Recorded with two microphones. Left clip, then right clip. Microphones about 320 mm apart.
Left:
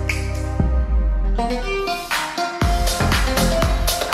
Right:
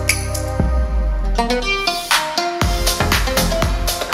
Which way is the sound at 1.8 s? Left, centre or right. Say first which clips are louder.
Right 5 dB; centre.